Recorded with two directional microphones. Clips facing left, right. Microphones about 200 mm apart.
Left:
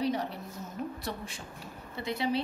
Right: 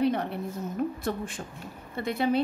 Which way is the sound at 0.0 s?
55° right (ahead or behind).